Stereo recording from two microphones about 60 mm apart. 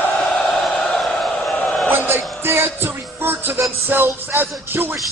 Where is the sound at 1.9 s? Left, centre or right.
Right.